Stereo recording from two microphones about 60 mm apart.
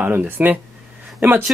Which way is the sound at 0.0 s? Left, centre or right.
Right.